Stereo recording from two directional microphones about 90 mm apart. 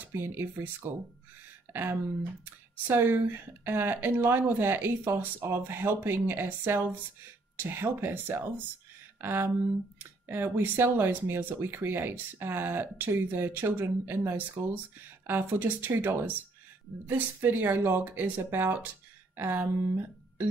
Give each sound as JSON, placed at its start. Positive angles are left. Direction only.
{"t": 0.1, "sound": "speech", "side_deg": -25}